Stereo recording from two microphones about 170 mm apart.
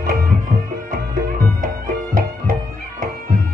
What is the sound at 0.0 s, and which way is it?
Music, 55° right (ahead or behind).